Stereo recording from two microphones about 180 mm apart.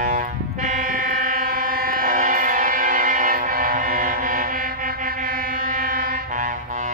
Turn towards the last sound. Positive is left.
turn(degrees=-50)  # may be behind; listen again after turning